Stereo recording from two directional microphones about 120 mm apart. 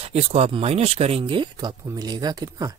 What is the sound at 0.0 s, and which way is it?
Speech, 60° right (ahead or behind).